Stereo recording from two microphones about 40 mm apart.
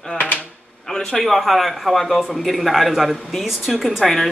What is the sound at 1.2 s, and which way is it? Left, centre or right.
Speech, centre.